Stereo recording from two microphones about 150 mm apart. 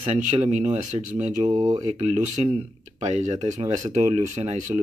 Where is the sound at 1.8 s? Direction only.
50° right (ahead or behind).